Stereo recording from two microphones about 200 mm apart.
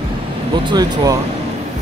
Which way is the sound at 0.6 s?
20° right (ahead or behind).